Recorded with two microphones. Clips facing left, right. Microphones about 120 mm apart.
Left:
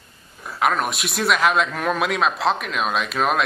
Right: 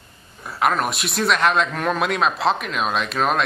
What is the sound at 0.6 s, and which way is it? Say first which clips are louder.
Speech: right 1 dB; centre (ahead or behind).